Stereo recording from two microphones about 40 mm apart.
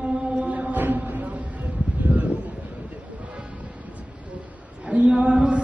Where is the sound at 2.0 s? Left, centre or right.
Right.